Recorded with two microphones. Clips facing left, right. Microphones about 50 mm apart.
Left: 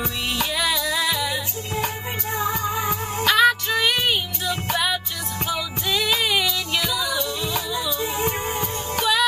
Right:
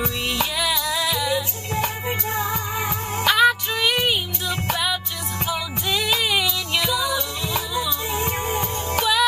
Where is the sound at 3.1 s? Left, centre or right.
Centre.